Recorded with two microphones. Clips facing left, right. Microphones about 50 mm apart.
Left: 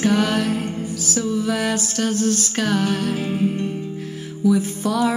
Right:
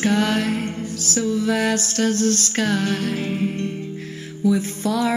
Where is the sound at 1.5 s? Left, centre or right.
Right.